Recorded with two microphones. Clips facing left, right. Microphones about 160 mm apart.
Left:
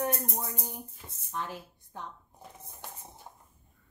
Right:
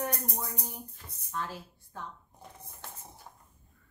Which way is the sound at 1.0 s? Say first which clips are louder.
Even; 20° left (ahead or behind).